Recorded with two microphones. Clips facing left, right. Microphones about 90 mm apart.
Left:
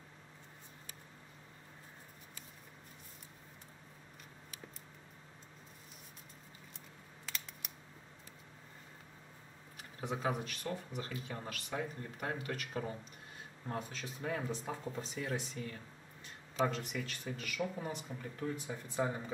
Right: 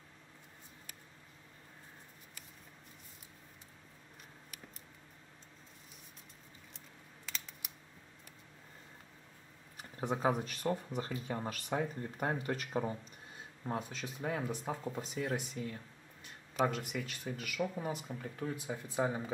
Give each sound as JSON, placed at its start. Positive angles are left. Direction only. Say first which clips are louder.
{"t": 7.2, "sound": "scissors", "louder": "even", "side_deg": 0}
{"t": 9.8, "sound": "speech", "louder": "right 4 dB", "side_deg": -40}
{"t": 14.0, "sound": "speech", "louder": "even", "side_deg": -15}